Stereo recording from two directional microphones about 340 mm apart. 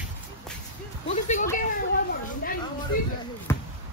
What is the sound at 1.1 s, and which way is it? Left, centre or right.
Speech, left.